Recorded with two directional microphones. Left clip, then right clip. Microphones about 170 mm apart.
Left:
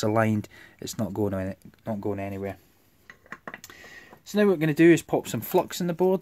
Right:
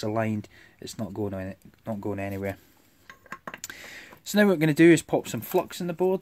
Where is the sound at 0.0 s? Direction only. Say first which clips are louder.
Left 4 dB; 25° left (ahead or behind).